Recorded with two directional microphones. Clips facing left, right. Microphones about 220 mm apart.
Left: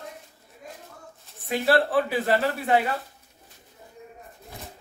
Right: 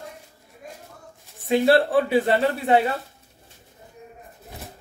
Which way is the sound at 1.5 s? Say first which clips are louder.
Right 5 dB; 25° right (ahead or behind).